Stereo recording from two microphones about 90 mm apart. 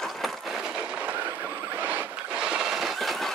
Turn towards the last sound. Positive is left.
turn(degrees=0)  # may be behind; listen again after turning